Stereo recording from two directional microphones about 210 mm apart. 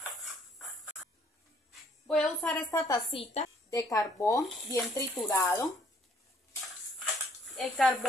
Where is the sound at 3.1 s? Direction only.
25° left (ahead or behind).